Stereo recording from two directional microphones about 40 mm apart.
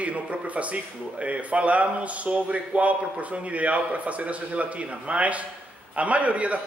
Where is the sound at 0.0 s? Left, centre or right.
Right.